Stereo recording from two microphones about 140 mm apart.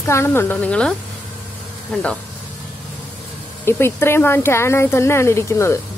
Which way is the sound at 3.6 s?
15° left (ahead or behind).